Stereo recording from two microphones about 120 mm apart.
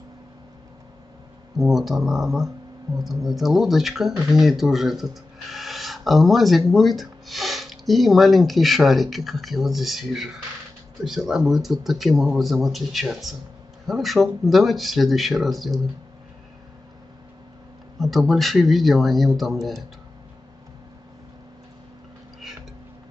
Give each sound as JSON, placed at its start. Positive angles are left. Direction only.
{"t": 1.6, "sound": "speech", "side_deg": 0}
{"t": 17.9, "sound": "speech", "side_deg": 0}